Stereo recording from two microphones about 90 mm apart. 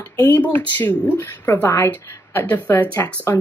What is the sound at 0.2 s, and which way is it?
Speech, 20° left (ahead or behind).